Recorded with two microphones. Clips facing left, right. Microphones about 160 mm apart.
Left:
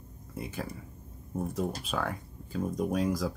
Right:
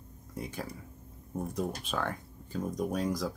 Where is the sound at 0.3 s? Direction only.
5° left (ahead or behind).